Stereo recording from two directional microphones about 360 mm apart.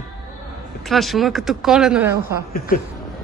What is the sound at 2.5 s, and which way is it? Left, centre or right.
Speech, left.